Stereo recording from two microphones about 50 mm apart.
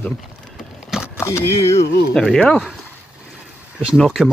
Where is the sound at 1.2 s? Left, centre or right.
Left.